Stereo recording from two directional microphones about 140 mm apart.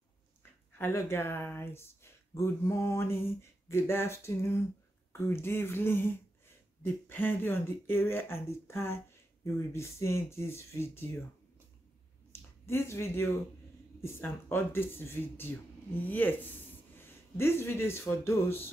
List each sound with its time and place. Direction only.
0.4 s speech: 15° left (ahead or behind)
12.3 s speech: 15° left (ahead or behind)